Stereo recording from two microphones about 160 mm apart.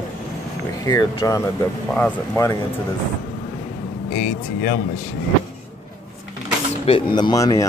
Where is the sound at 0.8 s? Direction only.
25° left (ahead or behind).